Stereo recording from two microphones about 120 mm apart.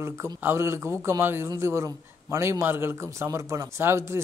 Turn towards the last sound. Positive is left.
turn(degrees=-20)  # may be behind; listen again after turning